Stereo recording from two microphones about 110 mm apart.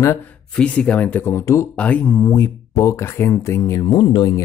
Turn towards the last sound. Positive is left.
turn(degrees=45)  # may be behind; listen again after turning